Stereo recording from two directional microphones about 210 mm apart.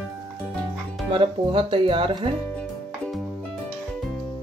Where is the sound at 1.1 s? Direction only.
25° right (ahead or behind).